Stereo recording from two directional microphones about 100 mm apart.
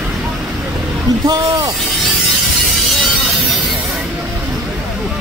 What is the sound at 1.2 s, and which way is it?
Speech, 40° right (ahead or behind).